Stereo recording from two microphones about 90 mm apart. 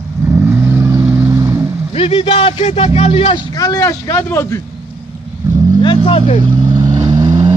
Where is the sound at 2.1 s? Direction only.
90° left.